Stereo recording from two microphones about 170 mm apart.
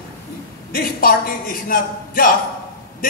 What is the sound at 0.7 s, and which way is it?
A man's voice, 60° left (ahead or behind).